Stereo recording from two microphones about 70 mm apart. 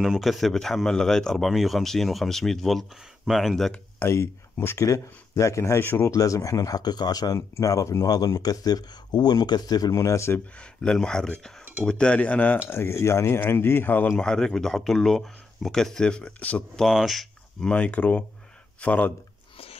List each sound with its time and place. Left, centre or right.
0.0 s speech: centre
4.0 s speech: left
5.8 s speech: left
6.0 s speech: left
7.3 s speech: left
9.9 s speech: left
10.5 s speech: centre
12.6 s speech: left
14.1 s speech: centre
16.7 s speech: centre
17.6 s speech: centre